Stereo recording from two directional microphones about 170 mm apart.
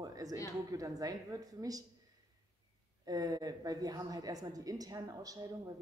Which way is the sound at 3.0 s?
20° right (ahead or behind).